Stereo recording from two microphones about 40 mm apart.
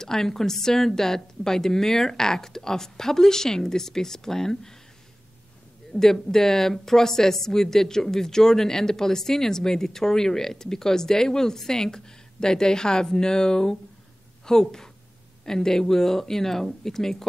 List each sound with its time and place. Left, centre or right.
0.0 s speech: centre
5.9 s a sound: centre
6.2 s a woman's voice: centre